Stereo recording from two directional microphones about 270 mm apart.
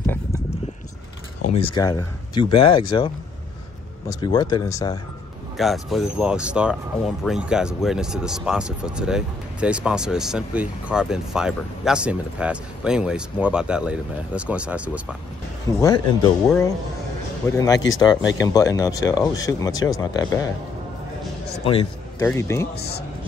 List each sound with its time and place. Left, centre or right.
1.4 s speech: left
4.1 s speech: centre
5.6 s speech: centre
15.8 s speech: centre
17.7 s speech: left
18.5 s speech: centre
22.2 s speech: centre